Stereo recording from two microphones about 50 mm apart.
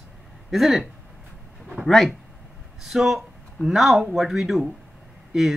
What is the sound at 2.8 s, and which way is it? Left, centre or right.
Speech, centre.